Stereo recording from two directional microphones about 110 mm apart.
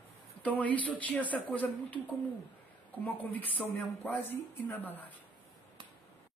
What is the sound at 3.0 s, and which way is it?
A woman's voice, 15° left (ahead or behind).